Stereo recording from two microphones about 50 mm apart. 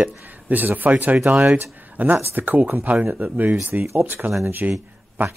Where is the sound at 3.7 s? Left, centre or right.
Right.